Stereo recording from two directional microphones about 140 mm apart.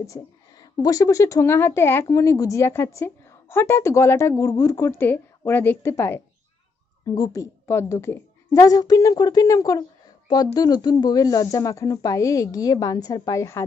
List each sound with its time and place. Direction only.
0.0 s a woman's voice: 25° left (ahead or behind)